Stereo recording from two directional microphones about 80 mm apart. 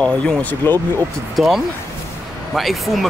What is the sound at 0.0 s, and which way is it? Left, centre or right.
Speech, centre.